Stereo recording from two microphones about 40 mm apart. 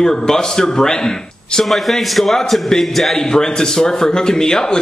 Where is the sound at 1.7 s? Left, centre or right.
Centre.